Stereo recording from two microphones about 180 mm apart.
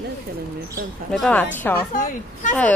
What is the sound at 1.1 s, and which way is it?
Speech, 5° left (ahead or behind).